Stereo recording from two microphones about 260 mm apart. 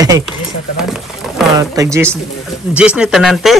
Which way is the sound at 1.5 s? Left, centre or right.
Centre.